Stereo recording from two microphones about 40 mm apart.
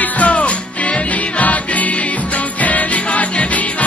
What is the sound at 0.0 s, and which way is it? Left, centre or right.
Music, left.